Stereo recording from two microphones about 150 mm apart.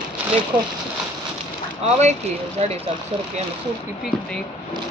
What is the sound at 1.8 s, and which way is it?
Speech, 45° right (ahead or behind).